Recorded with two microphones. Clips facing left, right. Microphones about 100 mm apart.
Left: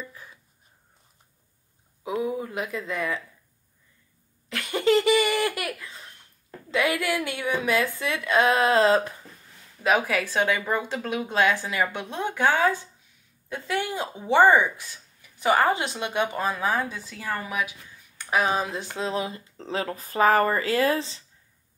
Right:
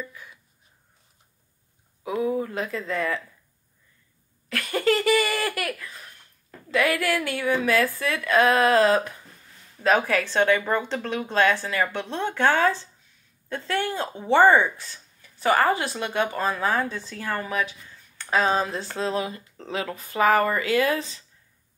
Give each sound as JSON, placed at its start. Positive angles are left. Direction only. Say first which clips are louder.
{"t": 0.0, "sound": "a sound", "louder": "right 2 dB", "side_deg": 35}
{"t": 2.0, "sound": "speech", "louder": "right 2 dB", "side_deg": 15}
{"t": 4.5, "sound": "a woman's voice", "louder": "left 1 dB", "side_deg": 20}
{"t": 9.8, "sound": "speech", "louder": "right 2 dB", "side_deg": 10}